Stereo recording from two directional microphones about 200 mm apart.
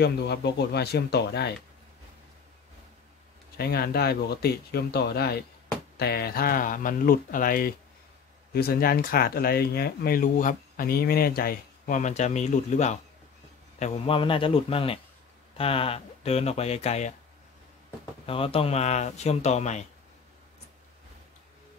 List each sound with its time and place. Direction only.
0.0 s speech: 55° left (ahead or behind)
3.5 s a man's voice: 50° left (ahead or behind); by 17.1 s 35° left (ahead or behind)
18.2 s speech: 30° left (ahead or behind)